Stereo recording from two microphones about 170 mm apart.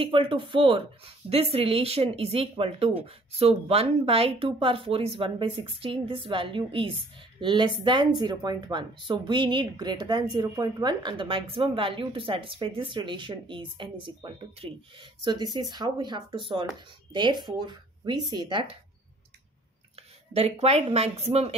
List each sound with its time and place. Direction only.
0.0 s speech: 30° right (ahead or behind)
20.3 s speech: 35° right (ahead or behind)